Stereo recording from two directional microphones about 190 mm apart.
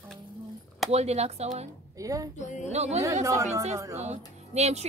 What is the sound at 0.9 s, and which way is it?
Speech, 35° right (ahead or behind).